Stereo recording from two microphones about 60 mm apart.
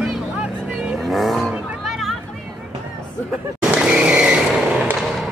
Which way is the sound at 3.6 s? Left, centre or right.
Centre.